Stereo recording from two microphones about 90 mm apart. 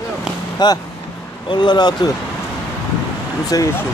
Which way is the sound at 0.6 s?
55° left (ahead or behind).